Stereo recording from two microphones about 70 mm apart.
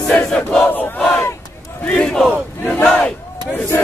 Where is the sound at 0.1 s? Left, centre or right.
Centre.